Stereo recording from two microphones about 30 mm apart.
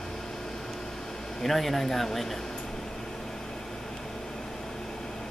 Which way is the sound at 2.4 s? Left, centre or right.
Centre.